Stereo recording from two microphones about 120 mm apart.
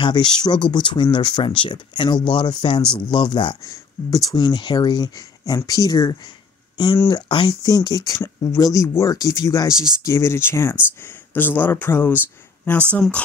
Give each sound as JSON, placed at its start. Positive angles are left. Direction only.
{"t": 0.0, "sound": "speech", "side_deg": 40}
{"t": 3.6, "sound": "speech", "side_deg": 30}